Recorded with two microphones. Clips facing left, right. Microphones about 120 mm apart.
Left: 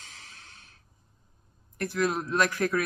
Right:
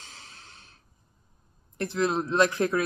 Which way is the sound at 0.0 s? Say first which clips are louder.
Right 1 dB; 25° right (ahead or behind).